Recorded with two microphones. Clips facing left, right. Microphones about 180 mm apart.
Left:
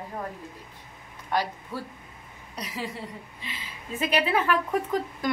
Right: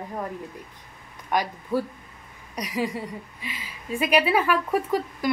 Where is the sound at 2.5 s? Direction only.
15° right (ahead or behind).